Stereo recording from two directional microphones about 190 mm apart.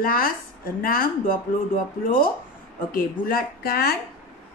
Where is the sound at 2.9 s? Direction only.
50° left (ahead or behind).